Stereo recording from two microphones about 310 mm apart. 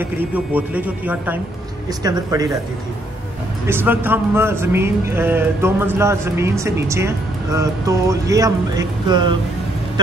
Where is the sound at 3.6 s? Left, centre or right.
Centre.